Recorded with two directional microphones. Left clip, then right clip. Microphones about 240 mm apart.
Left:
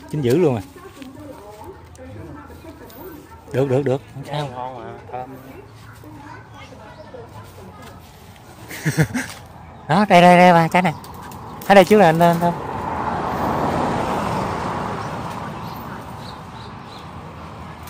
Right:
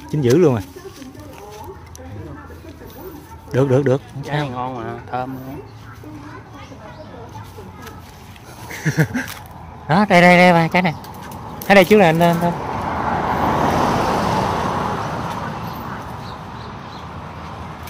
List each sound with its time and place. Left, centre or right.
0.4 s speech: centre
3.5 s speech: centre
4.6 s speech: right
8.6 s a sound: centre
9.8 s speech: centre
11.6 s vehicle: centre
13.5 s vehicle: right; by 15.9 s centre